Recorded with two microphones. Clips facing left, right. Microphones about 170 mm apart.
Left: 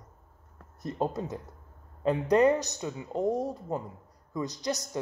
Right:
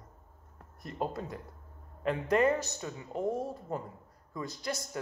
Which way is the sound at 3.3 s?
40° left (ahead or behind).